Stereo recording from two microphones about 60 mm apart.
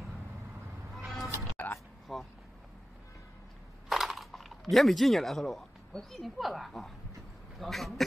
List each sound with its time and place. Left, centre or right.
0.9 s music: centre
1.6 s a sound: left
2.1 s speech: centre
3.9 s speech: centre